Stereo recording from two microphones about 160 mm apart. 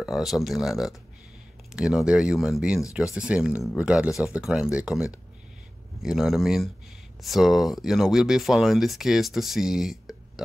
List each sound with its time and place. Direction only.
0.0 s speech: centre (ahead or behind)